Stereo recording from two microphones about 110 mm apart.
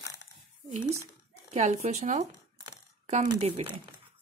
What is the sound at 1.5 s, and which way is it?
Speech, 90° right.